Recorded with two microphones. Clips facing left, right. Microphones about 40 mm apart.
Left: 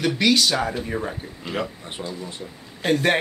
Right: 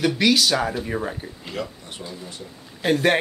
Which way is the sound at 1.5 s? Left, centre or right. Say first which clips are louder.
Left 4 dB; left.